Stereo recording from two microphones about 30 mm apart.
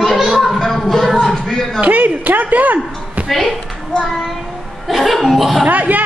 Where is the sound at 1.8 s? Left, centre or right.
Right.